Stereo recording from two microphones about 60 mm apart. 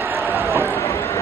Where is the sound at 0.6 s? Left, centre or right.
Left.